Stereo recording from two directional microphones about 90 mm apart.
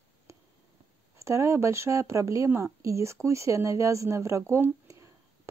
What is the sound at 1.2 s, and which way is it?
A woman's voice, 35° right (ahead or behind).